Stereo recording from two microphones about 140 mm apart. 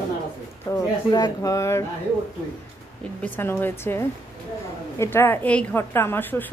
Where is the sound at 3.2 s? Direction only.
15° left (ahead or behind).